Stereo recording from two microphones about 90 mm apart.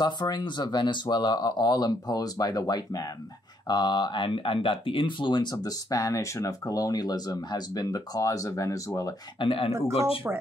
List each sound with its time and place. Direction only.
0.0 s speech: 55° left (ahead or behind)
3.6 s speech: 55° left (ahead or behind); by 9.1 s 35° left (ahead or behind)
9.4 s speech: 75° left (ahead or behind)
9.7 s speech: 35° right (ahead or behind)